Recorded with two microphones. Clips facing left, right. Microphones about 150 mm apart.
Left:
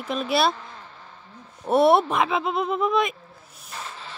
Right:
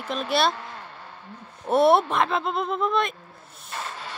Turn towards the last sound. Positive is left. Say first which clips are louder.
# right 3 dB
turn(degrees=-70)  # may be behind; listen again after turning